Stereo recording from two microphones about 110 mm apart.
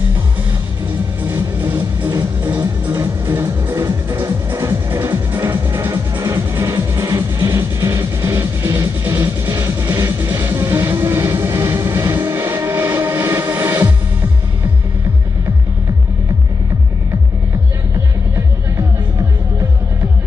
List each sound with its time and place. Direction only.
1.2 s music: 20° right (ahead or behind)